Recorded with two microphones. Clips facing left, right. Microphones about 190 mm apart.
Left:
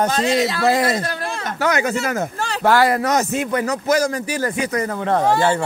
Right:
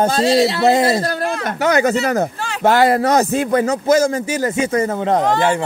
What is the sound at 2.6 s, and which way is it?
Speech, 25° right (ahead or behind).